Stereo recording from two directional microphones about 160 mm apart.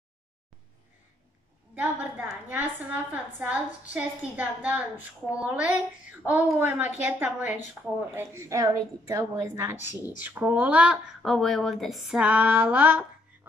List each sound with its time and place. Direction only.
1.8 s a woman's voice: 10° right (ahead or behind)